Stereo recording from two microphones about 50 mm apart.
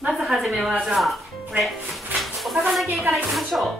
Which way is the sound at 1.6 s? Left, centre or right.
Centre.